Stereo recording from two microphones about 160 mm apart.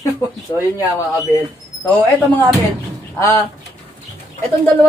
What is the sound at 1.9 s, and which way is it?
Speech, 10° left (ahead or behind).